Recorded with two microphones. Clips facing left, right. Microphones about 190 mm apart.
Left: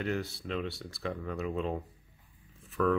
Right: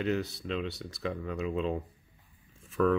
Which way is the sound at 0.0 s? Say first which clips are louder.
Right 3 dB; 20° right (ahead or behind).